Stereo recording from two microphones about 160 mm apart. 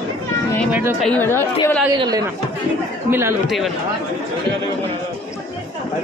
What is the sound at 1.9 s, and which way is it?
A man's voice, 25° right (ahead or behind).